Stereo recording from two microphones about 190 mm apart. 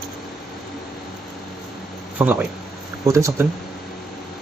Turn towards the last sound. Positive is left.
turn(degrees=-15)  # may be behind; listen again after turning